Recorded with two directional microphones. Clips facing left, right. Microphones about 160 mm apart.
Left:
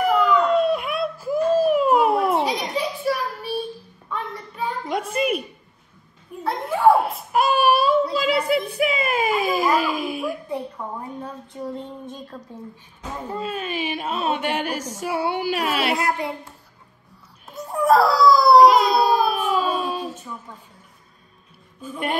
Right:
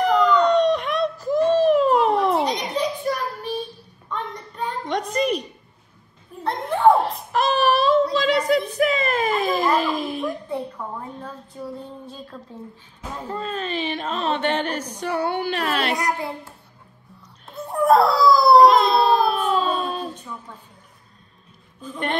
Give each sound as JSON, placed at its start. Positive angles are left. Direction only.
{"t": 0.0, "sound": "a sound", "side_deg": 5}
{"t": 2.7, "sound": "child singing", "side_deg": 5}
{"t": 5.1, "sound": "a sound", "side_deg": 5}
{"t": 11.5, "sound": "female singing", "side_deg": 25}
{"t": 12.3, "sound": "a woman's voice", "side_deg": 10}
{"t": 13.3, "sound": "a sound", "side_deg": 10}
{"t": 15.0, "sound": "a woman's voice", "side_deg": 10}
{"t": 15.3, "sound": "baby cry", "side_deg": 5}
{"t": 17.5, "sound": "crying", "side_deg": 0}
{"t": 21.8, "sound": "a woman's voice", "side_deg": 10}